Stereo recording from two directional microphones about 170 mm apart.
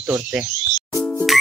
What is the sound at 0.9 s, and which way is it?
Music, centre (ahead or behind).